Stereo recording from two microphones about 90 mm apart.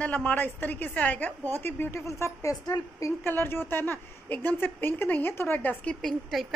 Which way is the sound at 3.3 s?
25° left (ahead or behind).